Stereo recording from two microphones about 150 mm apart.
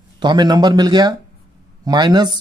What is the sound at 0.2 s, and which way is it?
Speech, 30° right (ahead or behind).